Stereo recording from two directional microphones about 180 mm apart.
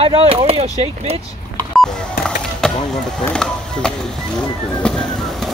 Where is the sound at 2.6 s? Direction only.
5° left (ahead or behind).